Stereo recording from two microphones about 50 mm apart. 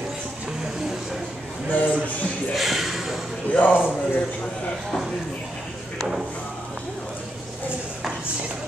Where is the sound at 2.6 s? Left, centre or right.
Centre.